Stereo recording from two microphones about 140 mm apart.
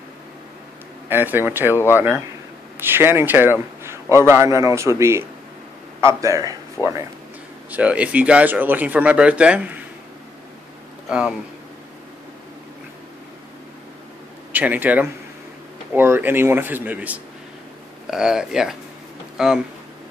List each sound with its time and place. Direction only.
1.0 s a man's voice: 15° right (ahead or behind)
7.7 s speech: 10° right (ahead or behind)
11.1 s speech: 5° right (ahead or behind)
14.5 s speech: 10° right (ahead or behind)